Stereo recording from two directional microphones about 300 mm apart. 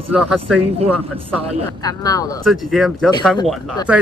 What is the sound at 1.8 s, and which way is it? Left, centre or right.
Speech, centre.